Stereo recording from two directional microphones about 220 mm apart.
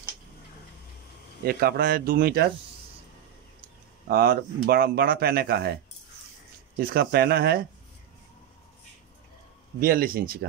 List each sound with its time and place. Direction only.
1.4 s speech: 45° right (ahead or behind)
4.1 s speech: 45° right (ahead or behind)
6.8 s speech: 45° right (ahead or behind)
9.8 s speech: 40° right (ahead or behind)